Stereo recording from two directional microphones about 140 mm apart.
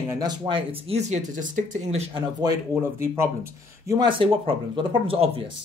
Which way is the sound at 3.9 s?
35° right (ahead or behind).